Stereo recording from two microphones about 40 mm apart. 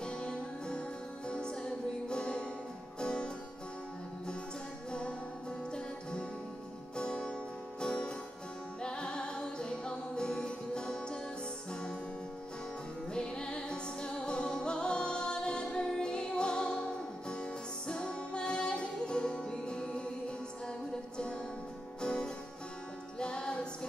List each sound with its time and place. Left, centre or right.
0.0 s music: left
7.0 s music: left
13.1 s music: left
22.0 s music: left